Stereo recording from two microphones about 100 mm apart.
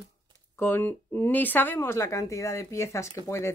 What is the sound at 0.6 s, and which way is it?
Speech, 20° left (ahead or behind).